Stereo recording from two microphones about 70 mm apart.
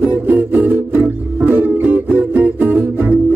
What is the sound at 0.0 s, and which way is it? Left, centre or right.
Music, right.